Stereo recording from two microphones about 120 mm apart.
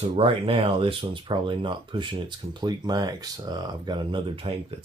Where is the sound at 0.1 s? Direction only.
50° right (ahead or behind).